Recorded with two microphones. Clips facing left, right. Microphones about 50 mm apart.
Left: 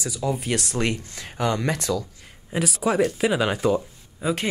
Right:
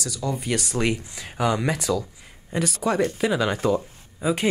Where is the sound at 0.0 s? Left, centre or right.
Centre.